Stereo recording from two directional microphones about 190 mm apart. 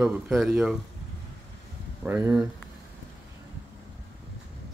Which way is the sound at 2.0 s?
10° right (ahead or behind).